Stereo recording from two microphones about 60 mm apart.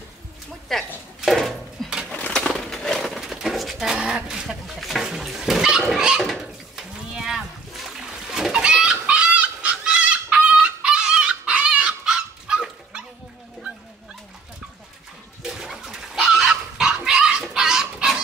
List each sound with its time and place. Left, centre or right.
0.7 s dishes: centre
2.3 s a sound: centre
3.1 s a sound: centre
7.2 s splash: centre
8.9 s goat: right
15.4 s fowl: centre